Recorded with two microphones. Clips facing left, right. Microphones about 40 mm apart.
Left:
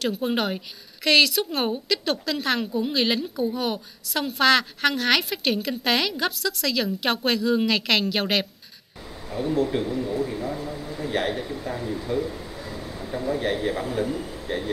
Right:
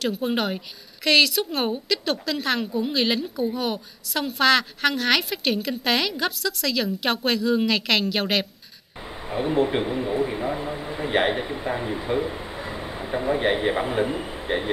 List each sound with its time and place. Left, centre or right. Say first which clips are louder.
0.0 s a woman's voice: even; centre
9.3 s a man's voice: right 2 dB; right